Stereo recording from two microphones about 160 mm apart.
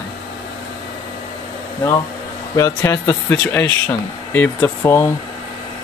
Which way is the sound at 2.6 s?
20° left (ahead or behind).